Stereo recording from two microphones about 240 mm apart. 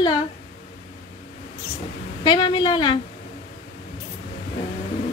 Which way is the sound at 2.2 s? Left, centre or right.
Centre.